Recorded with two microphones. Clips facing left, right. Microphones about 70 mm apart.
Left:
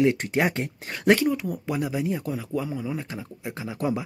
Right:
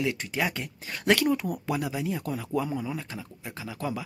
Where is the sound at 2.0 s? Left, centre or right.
Left.